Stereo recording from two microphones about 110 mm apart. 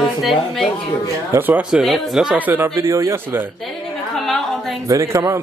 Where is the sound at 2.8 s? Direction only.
30° right (ahead or behind).